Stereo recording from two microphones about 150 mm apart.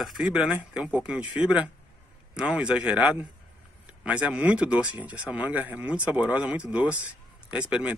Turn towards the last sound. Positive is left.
turn(degrees=-10)  # may be behind; listen again after turning